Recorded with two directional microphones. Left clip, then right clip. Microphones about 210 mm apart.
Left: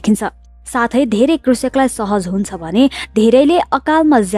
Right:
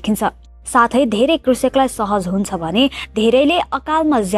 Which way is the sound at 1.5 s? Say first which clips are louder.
Even; 55° left (ahead or behind).